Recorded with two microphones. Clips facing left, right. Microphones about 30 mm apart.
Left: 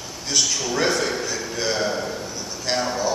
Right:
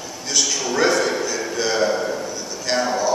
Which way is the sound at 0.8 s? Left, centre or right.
Centre.